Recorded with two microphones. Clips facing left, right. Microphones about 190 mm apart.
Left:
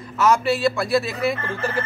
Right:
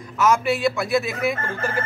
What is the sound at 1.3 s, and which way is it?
Speech, 45° right (ahead or behind).